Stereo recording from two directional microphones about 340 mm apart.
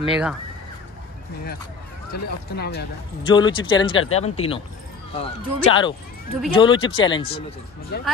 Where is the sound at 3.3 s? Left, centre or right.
Centre.